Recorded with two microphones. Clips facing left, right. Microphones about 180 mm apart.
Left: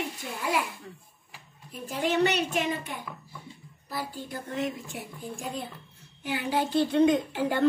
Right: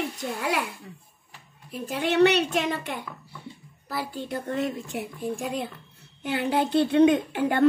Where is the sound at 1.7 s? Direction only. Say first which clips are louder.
Right 2 dB; 65° right (ahead or behind).